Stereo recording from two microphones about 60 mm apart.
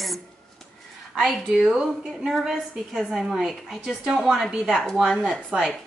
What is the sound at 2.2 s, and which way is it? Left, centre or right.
A woman's voice, centre.